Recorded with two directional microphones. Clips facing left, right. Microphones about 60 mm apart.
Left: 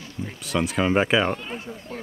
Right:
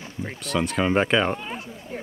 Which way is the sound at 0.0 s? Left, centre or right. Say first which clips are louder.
Right 1 dB; right.